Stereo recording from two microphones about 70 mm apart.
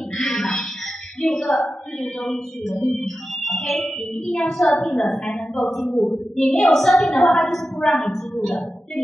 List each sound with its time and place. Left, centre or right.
0.2 s a sound: centre
1.2 s music: centre
5.9 s music: centre
6.3 s a woman's voice: centre